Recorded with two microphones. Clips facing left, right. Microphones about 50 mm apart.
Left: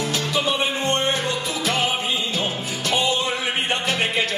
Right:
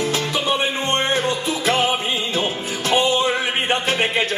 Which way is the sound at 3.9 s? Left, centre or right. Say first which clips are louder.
Right 1 dB; right.